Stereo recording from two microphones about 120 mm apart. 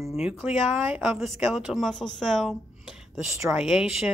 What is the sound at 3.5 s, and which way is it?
Speech, 5° right (ahead or behind).